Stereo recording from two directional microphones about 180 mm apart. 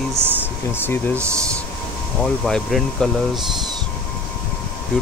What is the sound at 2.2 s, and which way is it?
Speech, centre (ahead or behind).